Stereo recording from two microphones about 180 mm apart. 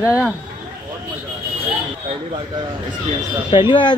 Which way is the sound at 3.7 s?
25° left (ahead or behind).